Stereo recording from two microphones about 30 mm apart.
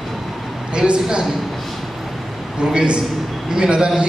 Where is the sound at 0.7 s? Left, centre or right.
Right.